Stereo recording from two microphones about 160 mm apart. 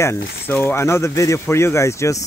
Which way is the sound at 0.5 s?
15° left (ahead or behind).